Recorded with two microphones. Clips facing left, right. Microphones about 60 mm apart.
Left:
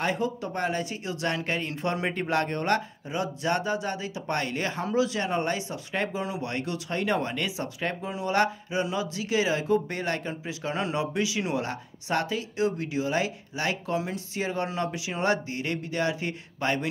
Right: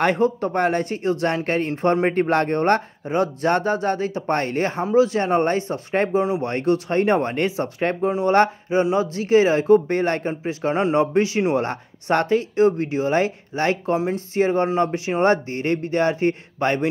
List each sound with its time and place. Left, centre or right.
0.0 s speech: right